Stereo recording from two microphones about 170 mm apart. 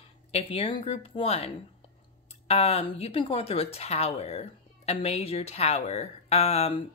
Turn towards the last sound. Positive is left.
turn(degrees=35)  # may be behind; listen again after turning